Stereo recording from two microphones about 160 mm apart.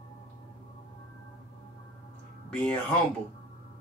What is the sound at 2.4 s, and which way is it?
Speech, 10° left (ahead or behind).